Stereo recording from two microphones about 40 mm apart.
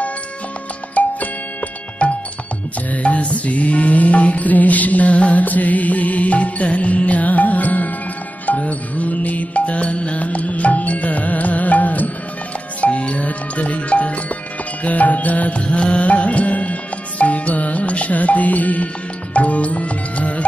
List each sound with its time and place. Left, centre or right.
1.0 s music: left